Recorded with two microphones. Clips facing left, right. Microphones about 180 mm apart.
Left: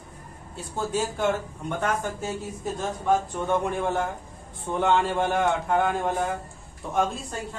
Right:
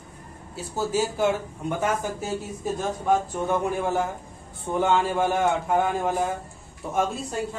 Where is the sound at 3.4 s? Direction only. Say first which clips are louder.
Right 1 dB; 5° right (ahead or behind).